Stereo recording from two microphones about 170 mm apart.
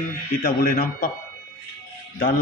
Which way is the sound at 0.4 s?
60° left (ahead or behind).